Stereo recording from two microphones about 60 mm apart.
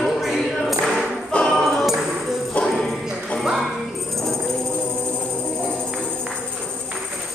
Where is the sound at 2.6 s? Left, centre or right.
Centre.